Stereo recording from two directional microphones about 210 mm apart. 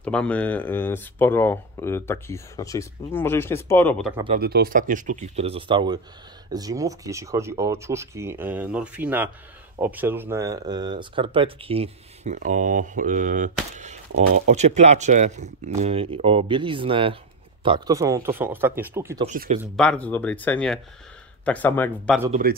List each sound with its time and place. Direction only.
0.0 s speech: 5° left (ahead or behind)
4.3 s speech: 45° right (ahead or behind); by 19.2 s 10° right (ahead or behind)
19.2 s speech: 35° right (ahead or behind)
19.8 s speech: 5° left (ahead or behind)
22.3 s speech: 45° right (ahead or behind)